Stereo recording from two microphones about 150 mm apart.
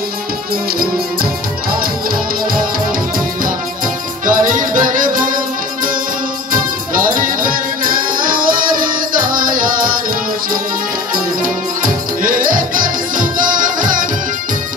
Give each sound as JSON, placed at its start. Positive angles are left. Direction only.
{"t": 4.3, "sound": "music", "side_deg": -60}
{"t": 6.5, "sound": "music", "side_deg": -65}
{"t": 11.1, "sound": "music", "side_deg": -65}